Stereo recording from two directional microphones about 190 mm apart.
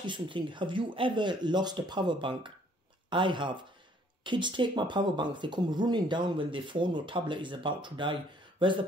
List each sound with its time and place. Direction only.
0.0 s speech: 25° right (ahead or behind)